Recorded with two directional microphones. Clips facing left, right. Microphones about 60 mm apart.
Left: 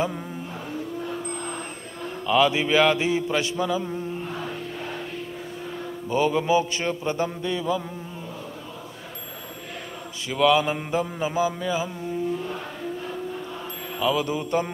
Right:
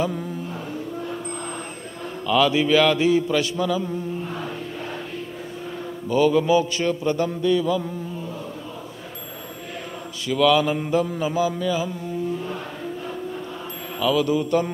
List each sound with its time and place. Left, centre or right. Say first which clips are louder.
2.2 s mantra: right 2 dB; centre
6.0 s mantra: right 4 dB; left
10.2 s mantra: right 2 dB; left
13.9 s mantra: right 4 dB; left